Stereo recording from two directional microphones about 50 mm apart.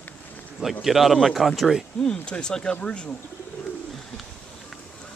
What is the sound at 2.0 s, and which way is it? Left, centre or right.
Speech, centre.